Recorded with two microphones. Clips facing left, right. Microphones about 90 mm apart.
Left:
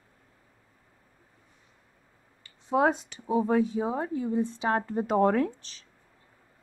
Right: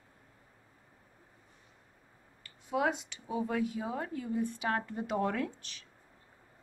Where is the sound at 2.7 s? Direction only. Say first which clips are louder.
Left 7 dB; 35° left (ahead or behind).